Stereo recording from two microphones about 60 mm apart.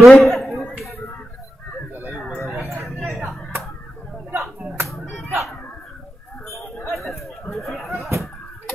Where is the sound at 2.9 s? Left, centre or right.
Centre.